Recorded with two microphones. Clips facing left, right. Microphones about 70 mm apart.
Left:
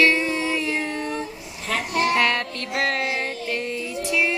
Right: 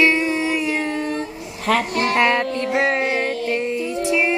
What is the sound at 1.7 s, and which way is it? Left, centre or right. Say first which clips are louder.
Speech: right 8 dB; right.